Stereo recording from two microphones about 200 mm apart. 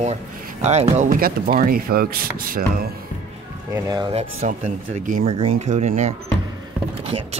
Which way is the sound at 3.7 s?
20° right (ahead or behind).